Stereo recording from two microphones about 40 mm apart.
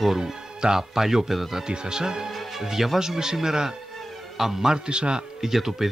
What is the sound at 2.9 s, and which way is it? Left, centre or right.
A man's voice, centre.